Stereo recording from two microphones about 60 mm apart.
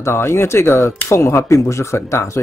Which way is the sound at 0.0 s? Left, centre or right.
Left.